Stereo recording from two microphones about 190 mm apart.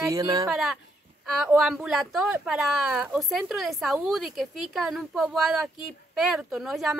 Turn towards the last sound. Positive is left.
turn(degrees=0)  # may be behind; listen again after turning